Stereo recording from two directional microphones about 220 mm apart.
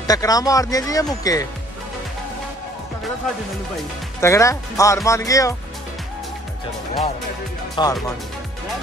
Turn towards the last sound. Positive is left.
turn(degrees=15)  # may be behind; listen again after turning